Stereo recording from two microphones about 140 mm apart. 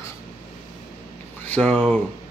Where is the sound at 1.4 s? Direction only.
10° left (ahead or behind).